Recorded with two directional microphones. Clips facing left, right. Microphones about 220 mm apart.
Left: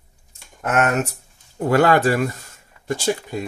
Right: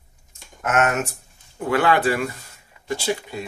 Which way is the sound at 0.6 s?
35° left (ahead or behind).